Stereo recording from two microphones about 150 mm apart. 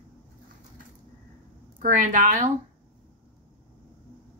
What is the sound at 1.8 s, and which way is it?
Speech, 60° right (ahead or behind).